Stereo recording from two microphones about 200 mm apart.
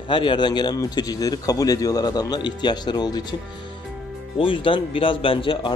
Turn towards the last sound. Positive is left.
turn(degrees=25)  # may be behind; listen again after turning